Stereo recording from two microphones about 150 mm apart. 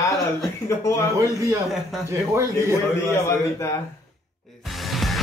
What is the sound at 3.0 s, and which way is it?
Speech, 20° left (ahead or behind).